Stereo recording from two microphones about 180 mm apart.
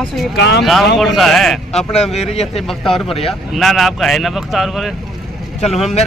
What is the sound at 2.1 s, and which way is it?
Speech, 35° left (ahead or behind).